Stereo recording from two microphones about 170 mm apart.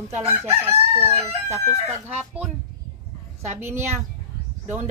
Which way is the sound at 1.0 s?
40° right (ahead or behind).